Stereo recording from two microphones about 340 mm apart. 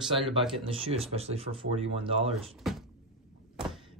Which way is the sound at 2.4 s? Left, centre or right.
Centre.